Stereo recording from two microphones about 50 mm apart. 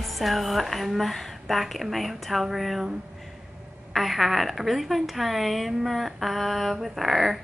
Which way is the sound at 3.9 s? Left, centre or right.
Centre.